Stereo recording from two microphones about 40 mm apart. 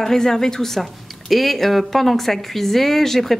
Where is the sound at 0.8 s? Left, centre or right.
Centre.